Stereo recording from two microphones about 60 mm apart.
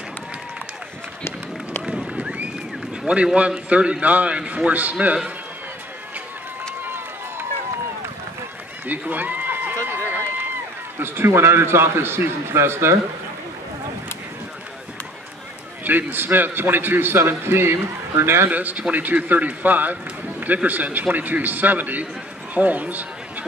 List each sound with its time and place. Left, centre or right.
1.9 s run: centre
3.3 s a man's voice: right
6.8 s run: right
8.8 s a sound: right
11.0 s a man's voice: right
15.8 s a man's voice: right
18.5 s a man's voice: right